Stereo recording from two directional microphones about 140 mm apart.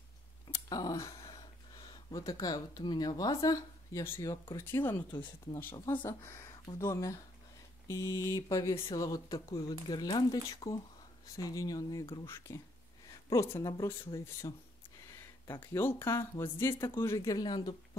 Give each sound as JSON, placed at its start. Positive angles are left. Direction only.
{"t": 0.7, "sound": "a sound", "side_deg": 25}
{"t": 2.0, "sound": "speech", "side_deg": 25}
{"t": 15.7, "sound": "speech", "side_deg": 15}